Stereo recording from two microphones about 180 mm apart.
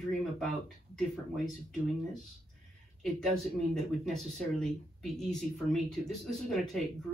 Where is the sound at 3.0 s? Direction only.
Centre (ahead or behind).